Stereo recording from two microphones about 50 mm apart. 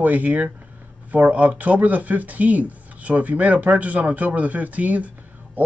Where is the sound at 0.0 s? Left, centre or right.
Right.